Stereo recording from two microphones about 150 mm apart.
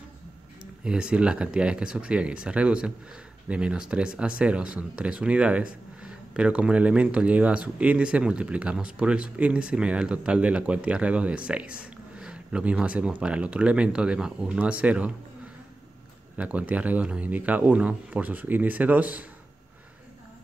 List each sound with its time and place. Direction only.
0.6 s speech: 5° right (ahead or behind)
16.3 s speech: 10° right (ahead or behind)